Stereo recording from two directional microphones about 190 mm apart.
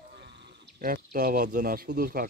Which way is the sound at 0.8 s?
50° right (ahead or behind).